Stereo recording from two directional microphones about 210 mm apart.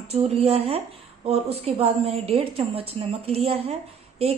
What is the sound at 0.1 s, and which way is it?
A woman's voice, 30° right (ahead or behind).